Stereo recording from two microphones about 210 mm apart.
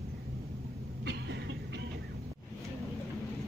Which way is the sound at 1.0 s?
55° right (ahead or behind).